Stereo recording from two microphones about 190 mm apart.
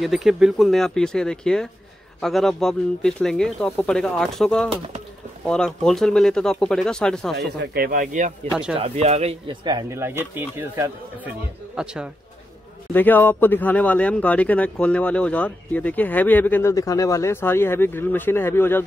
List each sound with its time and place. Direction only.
0.0 s speech: centre (ahead or behind)
7.3 s speech: 60° right (ahead or behind); by 8.3 s 40° right (ahead or behind)
8.7 s speech: 30° right (ahead or behind)
9.7 s speech: 20° right (ahead or behind)
12.9 s speech: 10° left (ahead or behind)